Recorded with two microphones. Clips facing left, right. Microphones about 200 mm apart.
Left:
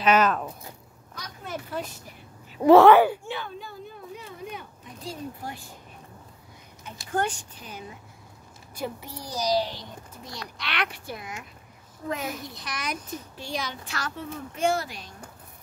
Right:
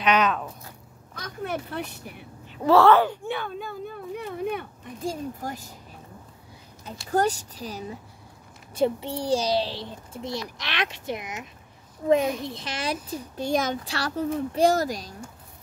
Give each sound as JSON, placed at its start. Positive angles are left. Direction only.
{"t": 0.0, "sound": "speech", "side_deg": 5}
{"t": 1.1, "sound": "a woman's voice", "side_deg": -60}
{"t": 2.6, "sound": "speech", "side_deg": 15}
{"t": 3.3, "sound": "a sound", "side_deg": -55}
{"t": 5.4, "sound": "speech", "side_deg": -40}
{"t": 6.8, "sound": "a child's voice", "side_deg": -35}
{"t": 13.4, "sound": "speech", "side_deg": -45}
{"t": 13.8, "sound": "speech", "side_deg": -35}